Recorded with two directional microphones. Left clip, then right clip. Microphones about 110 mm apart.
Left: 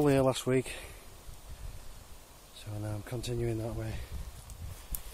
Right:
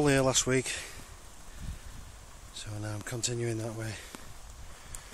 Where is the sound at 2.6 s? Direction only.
25° right (ahead or behind).